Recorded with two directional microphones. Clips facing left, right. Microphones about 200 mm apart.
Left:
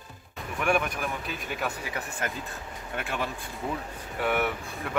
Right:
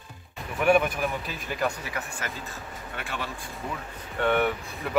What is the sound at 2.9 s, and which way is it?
Speech, 50° left (ahead or behind).